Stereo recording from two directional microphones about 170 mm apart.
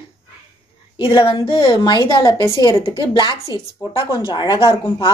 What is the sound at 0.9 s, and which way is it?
A woman's voice, 30° left (ahead or behind).